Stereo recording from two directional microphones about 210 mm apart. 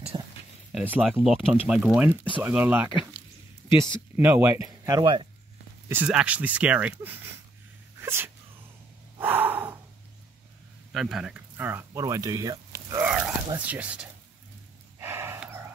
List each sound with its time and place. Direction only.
0.1 s a sound: 20° right (ahead or behind)
0.7 s speech: 5° right (ahead or behind); by 5.3 s 20° right (ahead or behind)
5.9 s speech: 5° right (ahead or behind)
8.0 s sneeze: 10° right (ahead or behind)
9.2 s gasp: 10° right (ahead or behind)
10.9 s speech: centre (ahead or behind)
15.0 s a sound: 10° right (ahead or behind)